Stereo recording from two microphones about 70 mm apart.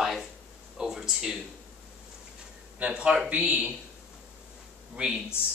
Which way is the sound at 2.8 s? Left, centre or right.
Centre.